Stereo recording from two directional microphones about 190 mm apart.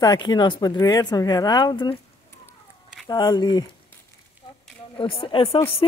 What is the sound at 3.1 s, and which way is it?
Speech, 20° left (ahead or behind).